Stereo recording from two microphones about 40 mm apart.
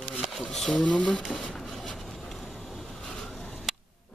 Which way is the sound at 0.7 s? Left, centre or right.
Left.